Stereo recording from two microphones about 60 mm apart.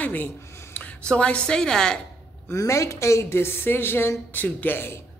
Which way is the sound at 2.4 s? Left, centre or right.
Left.